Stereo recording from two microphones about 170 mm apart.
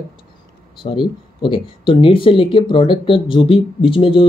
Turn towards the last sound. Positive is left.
turn(degrees=30)  # may be behind; listen again after turning